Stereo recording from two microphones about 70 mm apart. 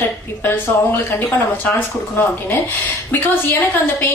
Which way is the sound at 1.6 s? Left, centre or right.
Left.